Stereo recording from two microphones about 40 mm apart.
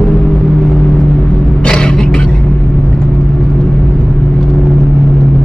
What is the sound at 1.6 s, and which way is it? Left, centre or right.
Music, left.